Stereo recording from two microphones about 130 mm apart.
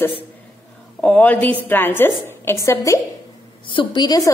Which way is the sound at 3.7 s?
35° left (ahead or behind).